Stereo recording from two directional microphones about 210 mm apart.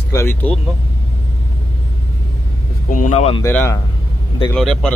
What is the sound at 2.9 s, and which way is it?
Speech, 35° left (ahead or behind).